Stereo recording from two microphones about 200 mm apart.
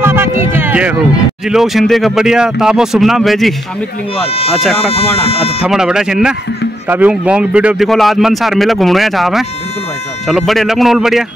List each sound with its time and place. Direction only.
0.0 s a sound: 10° right (ahead or behind)
1.5 s speech: centre (ahead or behind)
4.3 s speech: 30° left (ahead or behind)
4.6 s speech: centre (ahead or behind)
4.9 s speech: 30° left (ahead or behind)
5.6 s speech: 5° right (ahead or behind)